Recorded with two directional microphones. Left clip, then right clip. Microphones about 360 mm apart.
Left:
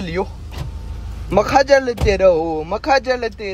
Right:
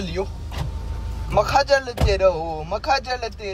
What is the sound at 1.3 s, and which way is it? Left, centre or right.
Speech, left.